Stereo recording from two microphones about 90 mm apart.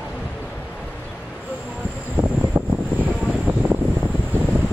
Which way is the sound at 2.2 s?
15° right (ahead or behind).